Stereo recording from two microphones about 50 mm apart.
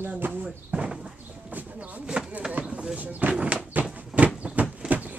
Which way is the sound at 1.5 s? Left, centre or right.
Right.